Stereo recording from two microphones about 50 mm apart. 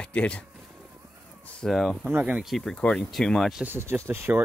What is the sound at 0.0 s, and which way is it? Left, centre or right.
Speech, left.